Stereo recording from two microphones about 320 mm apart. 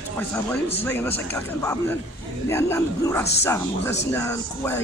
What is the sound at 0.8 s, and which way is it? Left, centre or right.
Speech, centre.